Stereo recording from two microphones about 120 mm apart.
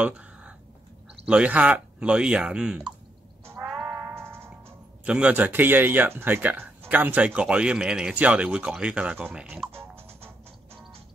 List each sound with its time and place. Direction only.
0.0 s a sound: 10° right (ahead or behind)
1.2 s speech: 10° right (ahead or behind)
3.6 s music: 5° right (ahead or behind)
4.0 s music: 20° right (ahead or behind)
5.0 s speech: 10° right (ahead or behind)